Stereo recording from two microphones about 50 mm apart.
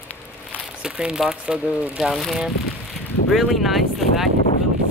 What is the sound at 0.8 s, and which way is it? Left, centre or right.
Speech, centre.